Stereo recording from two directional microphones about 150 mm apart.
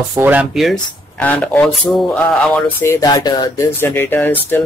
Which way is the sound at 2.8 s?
20° left (ahead or behind).